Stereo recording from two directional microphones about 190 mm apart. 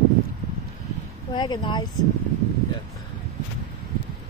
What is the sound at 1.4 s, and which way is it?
Speech, 25° left (ahead or behind).